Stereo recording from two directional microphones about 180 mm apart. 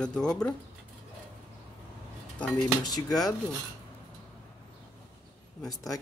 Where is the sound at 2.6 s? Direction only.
20° left (ahead or behind).